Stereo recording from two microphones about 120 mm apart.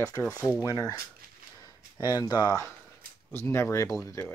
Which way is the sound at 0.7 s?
30° left (ahead or behind).